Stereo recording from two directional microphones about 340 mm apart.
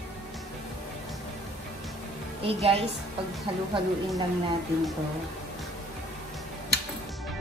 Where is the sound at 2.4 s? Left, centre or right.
Centre.